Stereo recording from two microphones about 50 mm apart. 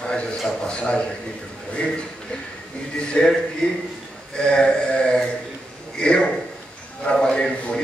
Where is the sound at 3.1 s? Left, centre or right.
Centre.